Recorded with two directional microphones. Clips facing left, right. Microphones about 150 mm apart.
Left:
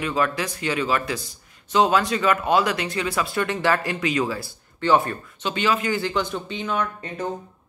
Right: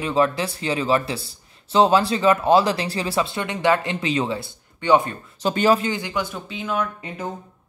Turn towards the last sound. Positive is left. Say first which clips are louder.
# right 1 dB
turn(degrees=-5)  # may be behind; listen again after turning